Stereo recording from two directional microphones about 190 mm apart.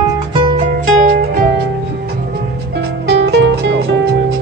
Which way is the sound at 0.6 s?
45° right (ahead or behind).